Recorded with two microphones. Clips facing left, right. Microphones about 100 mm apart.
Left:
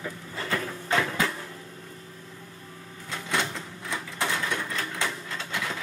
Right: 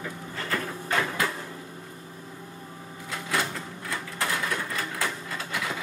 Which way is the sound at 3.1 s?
5° right (ahead or behind).